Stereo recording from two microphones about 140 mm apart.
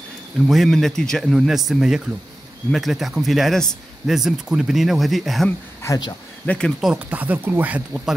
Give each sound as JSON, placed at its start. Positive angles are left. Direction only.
{"t": 0.5, "sound": "speech", "side_deg": 0}
{"t": 5.8, "sound": "speech", "side_deg": 25}
{"t": 6.4, "sound": "speech", "side_deg": 10}
{"t": 6.8, "sound": "speech", "side_deg": -10}